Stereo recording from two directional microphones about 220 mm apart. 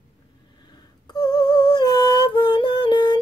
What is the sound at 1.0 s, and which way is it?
Lullaby, 20° left (ahead or behind).